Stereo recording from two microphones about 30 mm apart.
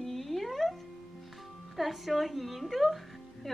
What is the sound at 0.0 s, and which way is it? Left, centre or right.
Music, centre.